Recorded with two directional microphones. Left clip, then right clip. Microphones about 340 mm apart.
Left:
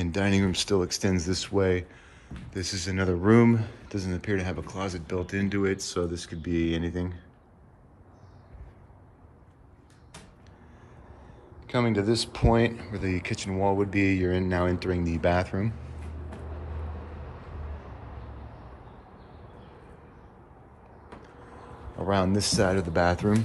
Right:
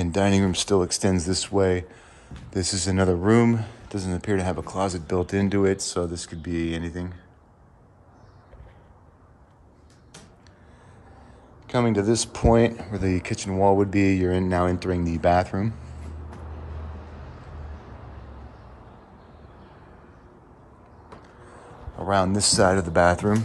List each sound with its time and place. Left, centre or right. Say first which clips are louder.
0.0 s speech: right 5 dB; centre
11.6 s speech: right 4 dB; centre
21.2 s a sound: right 1 dB; centre
22.3 s speech: right 4 dB; right
22.6 s speech: right 6 dB; centre